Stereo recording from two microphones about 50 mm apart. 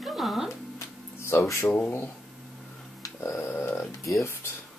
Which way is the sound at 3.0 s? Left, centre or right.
Left.